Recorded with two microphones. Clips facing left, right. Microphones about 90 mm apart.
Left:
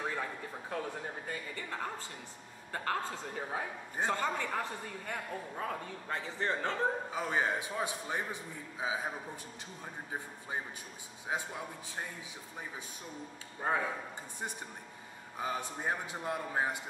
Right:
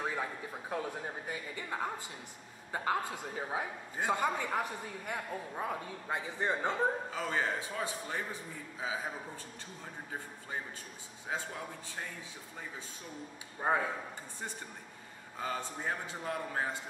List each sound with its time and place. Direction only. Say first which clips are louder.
0.0 s a man's voice: right 1 dB; 10° right (ahead or behind)
7.1 s a man's voice: left 1 dB; 15° left (ahead or behind)
11.2 s a man's voice: left 1 dB; 15° left (ahead or behind)
13.6 s a man's voice: right 2 dB; 15° right (ahead or behind)
15.3 s a man's voice: left 1 dB; 15° left (ahead or behind)